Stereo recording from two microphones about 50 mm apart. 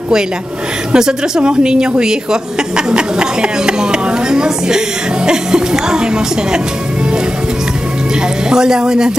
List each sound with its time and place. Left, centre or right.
0.9 s a woman's voice: centre
8.5 s a woman's voice: centre